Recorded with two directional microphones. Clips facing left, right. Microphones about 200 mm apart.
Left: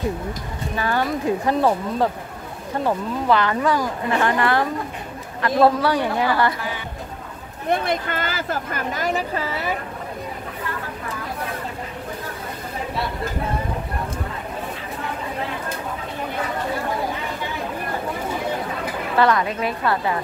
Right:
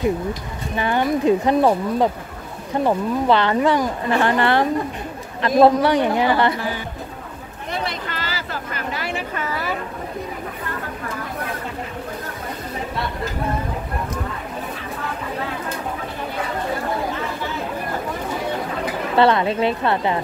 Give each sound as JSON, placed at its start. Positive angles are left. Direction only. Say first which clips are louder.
{"t": 0.7, "sound": "speech", "louder": "right 3 dB", "side_deg": -20}
{"t": 7.7, "sound": "a woman's voice", "louder": "left 5 dB", "side_deg": 50}
{"t": 19.1, "sound": "speech", "louder": "right 3 dB", "side_deg": -25}